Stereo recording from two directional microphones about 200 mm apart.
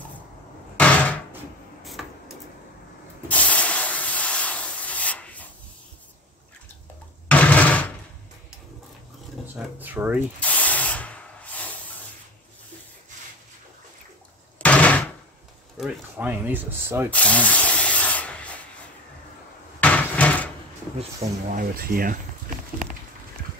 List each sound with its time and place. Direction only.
0.7 s a sound: 5° left (ahead or behind)
3.3 s rub: 5° left (ahead or behind)
7.2 s a sound: 5° left (ahead or behind)
9.6 s speech: 10° right (ahead or behind)
10.4 s rub: 5° left (ahead or behind)
14.6 s knock: 5° left (ahead or behind)
15.8 s speech: 5° right (ahead or behind)
17.1 s rub: 5° left (ahead or behind)
19.8 s a sound: 5° left (ahead or behind)
21.0 s speech: 40° right (ahead or behind)